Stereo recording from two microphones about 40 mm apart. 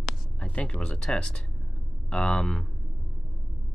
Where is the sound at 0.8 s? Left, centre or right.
Centre.